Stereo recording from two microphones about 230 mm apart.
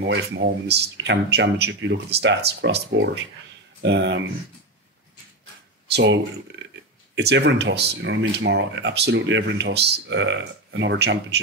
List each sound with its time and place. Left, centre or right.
0.0 s speech: right
5.9 s speech: right